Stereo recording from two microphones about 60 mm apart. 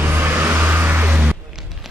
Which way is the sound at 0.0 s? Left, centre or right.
Right.